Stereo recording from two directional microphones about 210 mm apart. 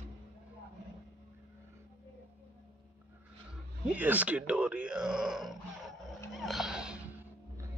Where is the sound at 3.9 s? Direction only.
10° right (ahead or behind).